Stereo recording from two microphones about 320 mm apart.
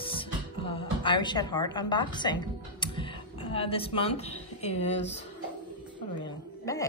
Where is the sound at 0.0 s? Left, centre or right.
Centre.